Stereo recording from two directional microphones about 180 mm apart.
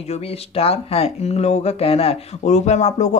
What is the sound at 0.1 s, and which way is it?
Speech, 35° left (ahead or behind).